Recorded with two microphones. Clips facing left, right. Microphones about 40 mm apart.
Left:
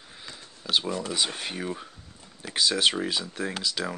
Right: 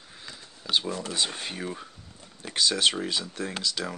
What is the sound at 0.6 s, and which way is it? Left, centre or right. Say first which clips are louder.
Speech: left 1 dB; centre.